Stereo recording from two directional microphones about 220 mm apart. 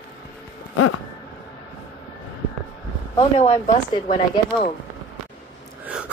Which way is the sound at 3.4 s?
30° left (ahead or behind).